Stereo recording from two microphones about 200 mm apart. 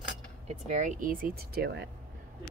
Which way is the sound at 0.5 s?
35° right (ahead or behind).